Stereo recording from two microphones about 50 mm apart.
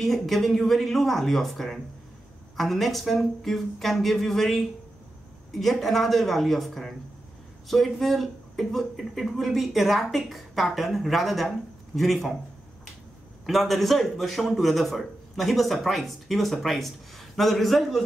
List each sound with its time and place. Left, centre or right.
0.0 s a man's voice: centre
13.5 s a man's voice: centre